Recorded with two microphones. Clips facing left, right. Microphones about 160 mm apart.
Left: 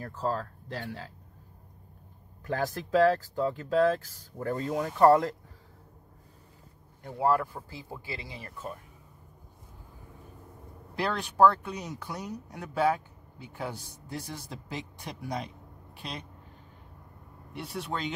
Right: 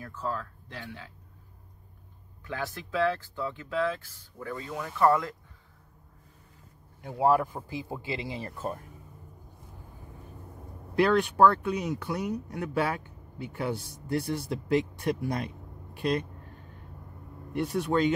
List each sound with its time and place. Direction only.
0.0 s speech: 40° left (ahead or behind)
2.4 s speech: 40° left (ahead or behind)
7.0 s speech: 10° right (ahead or behind); by 8.8 s 40° right (ahead or behind)
11.1 s speech: 60° right (ahead or behind)
17.6 s speech: 50° right (ahead or behind)